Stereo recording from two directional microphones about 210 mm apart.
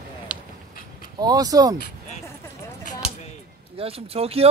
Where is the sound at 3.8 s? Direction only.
30° right (ahead or behind).